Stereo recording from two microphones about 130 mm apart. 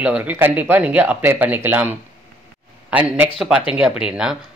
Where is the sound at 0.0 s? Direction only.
10° right (ahead or behind).